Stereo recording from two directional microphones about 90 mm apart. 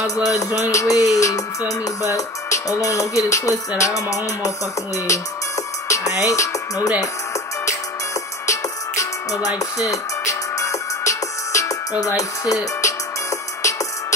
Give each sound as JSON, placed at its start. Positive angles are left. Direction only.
{"t": 0.0, "sound": "music", "side_deg": 40}
{"t": 5.9, "sound": "speech", "side_deg": 40}
{"t": 8.5, "sound": "music", "side_deg": 35}